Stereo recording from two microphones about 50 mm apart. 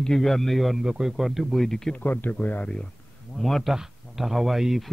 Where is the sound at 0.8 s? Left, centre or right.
Centre.